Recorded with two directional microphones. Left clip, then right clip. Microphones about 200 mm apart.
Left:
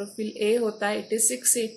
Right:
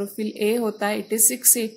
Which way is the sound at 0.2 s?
45° right (ahead or behind).